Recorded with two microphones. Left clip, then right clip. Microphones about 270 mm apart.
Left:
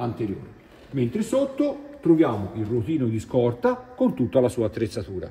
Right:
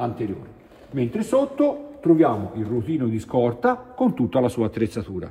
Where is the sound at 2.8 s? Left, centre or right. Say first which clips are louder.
Right 1 dB; centre.